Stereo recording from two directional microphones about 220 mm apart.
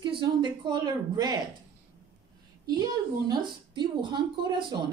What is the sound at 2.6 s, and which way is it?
Speech, 20° right (ahead or behind).